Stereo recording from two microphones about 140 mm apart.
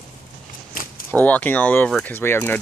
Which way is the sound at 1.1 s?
10° left (ahead or behind).